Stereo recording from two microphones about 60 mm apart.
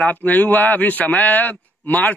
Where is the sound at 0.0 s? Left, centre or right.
Left.